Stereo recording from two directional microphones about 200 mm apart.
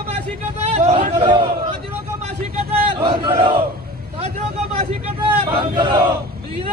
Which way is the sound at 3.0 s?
20° right (ahead or behind).